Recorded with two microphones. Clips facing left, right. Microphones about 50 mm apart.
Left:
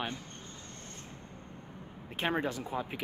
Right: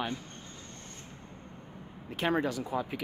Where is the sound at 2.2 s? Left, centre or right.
Left.